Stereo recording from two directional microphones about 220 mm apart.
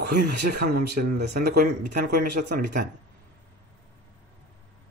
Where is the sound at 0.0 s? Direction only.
50° right (ahead or behind).